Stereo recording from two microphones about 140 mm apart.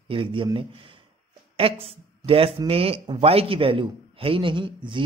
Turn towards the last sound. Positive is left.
turn(degrees=-35)  # may be behind; listen again after turning